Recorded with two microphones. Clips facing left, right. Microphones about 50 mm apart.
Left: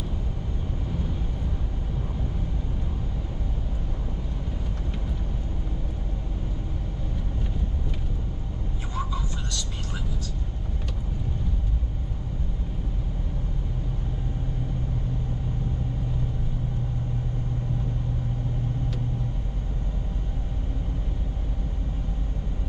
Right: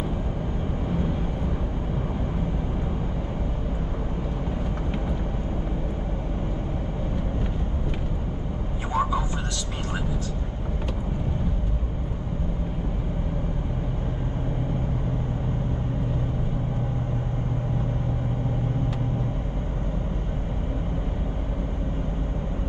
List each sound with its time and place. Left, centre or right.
0.8 s vehicle: right
8.9 s vehicle: right